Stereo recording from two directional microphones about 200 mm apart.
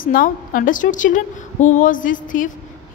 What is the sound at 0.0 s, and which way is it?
A woman's voice, 45° left (ahead or behind).